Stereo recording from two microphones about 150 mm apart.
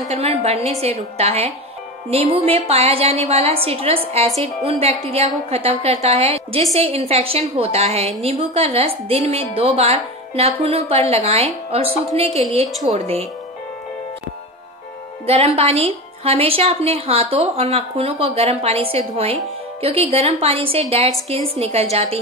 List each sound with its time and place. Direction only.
0.1 s a woman's voice: 45° right (ahead or behind)
15.2 s a woman's voice: 40° right (ahead or behind)